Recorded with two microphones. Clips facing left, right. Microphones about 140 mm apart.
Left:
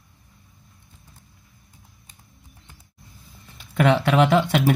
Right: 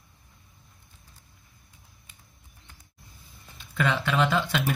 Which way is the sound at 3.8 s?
65° left (ahead or behind).